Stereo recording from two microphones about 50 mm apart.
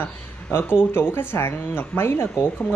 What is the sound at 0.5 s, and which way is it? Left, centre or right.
Speech, left.